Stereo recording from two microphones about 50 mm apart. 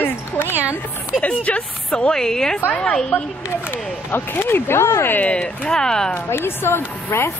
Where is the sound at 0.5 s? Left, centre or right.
Right.